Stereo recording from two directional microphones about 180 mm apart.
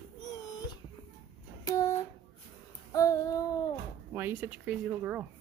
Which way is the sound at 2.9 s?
15° left (ahead or behind).